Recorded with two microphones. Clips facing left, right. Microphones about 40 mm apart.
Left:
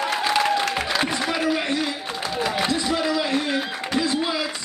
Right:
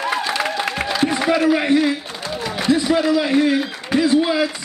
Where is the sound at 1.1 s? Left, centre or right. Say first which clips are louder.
Right 6 dB; centre.